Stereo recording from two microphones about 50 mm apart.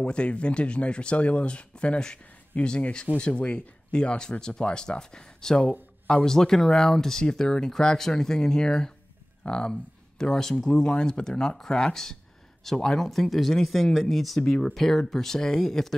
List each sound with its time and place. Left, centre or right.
0.0 s speech: left; by 10.9 s centre
10.9 s speech: centre